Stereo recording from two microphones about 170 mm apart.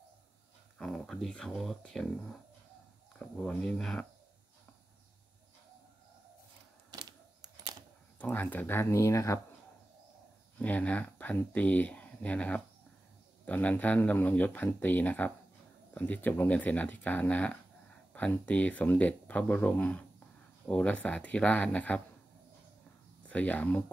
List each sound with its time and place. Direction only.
0.7 s speech: centre (ahead or behind)
3.2 s speech: 5° left (ahead or behind)
6.9 s a sound: 25° right (ahead or behind)
8.2 s speech: 10° left (ahead or behind)
10.6 s speech: 10° left (ahead or behind)
23.2 s speech: 10° left (ahead or behind)